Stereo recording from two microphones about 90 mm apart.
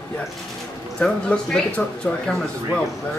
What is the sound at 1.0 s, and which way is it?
Speech, 10° left (ahead or behind).